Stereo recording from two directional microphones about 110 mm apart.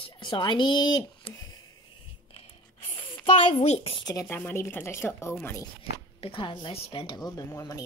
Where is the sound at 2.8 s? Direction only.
60° left (ahead or behind).